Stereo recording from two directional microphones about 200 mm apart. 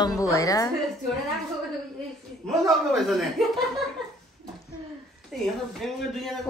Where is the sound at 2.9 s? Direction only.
Centre (ahead or behind).